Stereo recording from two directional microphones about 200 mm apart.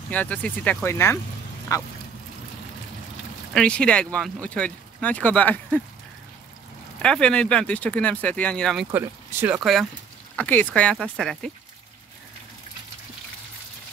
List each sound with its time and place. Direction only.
0.1 s speech: 5° left (ahead or behind)
3.5 s speech: 5° left (ahead or behind)
7.0 s speech: 5° left (ahead or behind)
8.9 s speech: 10° right (ahead or behind)